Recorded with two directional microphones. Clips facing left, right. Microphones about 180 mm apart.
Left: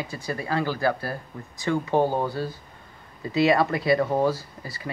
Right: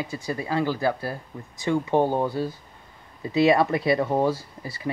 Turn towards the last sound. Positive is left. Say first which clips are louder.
# right 1 dB
turn(degrees=-25)  # may be behind; listen again after turning